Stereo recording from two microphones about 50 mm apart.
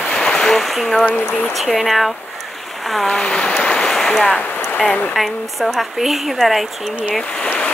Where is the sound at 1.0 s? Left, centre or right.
Left.